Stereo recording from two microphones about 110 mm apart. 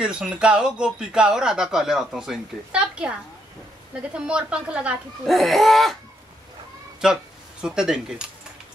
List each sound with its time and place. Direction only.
0.0 s speech: 10° right (ahead or behind)
4.1 s speech: 10° right (ahead or behind)
5.2 s laughter: centre (ahead or behind)
7.6 s speech: 5° right (ahead or behind)